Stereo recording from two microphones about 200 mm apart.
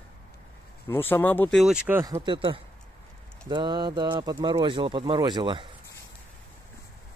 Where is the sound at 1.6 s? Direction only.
5° right (ahead or behind); by 5.7 s 25° right (ahead or behind).